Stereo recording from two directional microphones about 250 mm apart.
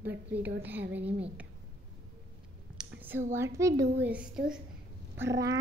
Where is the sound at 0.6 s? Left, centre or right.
Centre.